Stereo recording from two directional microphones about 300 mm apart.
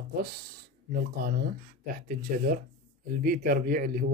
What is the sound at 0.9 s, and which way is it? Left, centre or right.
Speech, right.